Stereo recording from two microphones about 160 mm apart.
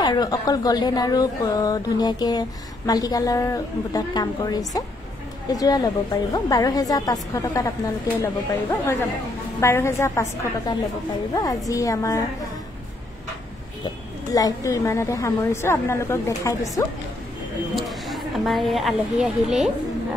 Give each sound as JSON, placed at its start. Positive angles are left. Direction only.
{"t": 0.0, "sound": "a woman's voice", "side_deg": 25}
{"t": 11.3, "sound": "a woman's voice", "side_deg": 20}
{"t": 14.3, "sound": "a woman's voice", "side_deg": 20}
{"t": 17.7, "sound": "a woman's voice", "side_deg": 0}